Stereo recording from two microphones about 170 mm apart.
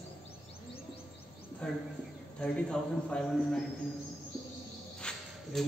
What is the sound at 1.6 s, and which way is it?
A man's voice, 5° left (ahead or behind).